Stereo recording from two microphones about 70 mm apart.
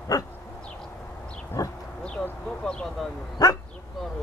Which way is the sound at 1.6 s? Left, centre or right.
Left.